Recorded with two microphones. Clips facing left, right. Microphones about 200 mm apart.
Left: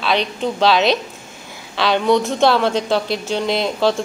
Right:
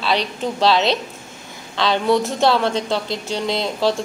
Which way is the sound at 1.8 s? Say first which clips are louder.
Left 2 dB; centre (ahead or behind).